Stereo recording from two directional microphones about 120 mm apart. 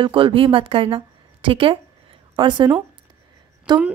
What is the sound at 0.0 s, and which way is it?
A woman's voice, 45° right (ahead or behind).